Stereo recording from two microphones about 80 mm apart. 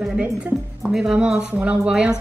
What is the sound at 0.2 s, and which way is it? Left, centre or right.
Speech, centre.